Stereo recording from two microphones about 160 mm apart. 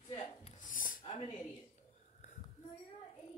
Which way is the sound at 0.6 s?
55° left (ahead or behind).